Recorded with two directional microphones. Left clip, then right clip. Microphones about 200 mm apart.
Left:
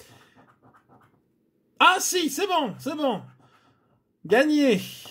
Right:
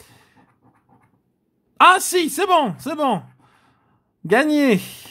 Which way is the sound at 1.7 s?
35° right (ahead or behind).